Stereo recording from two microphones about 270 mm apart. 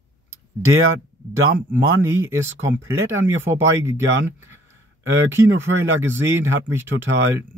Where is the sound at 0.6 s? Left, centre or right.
Right.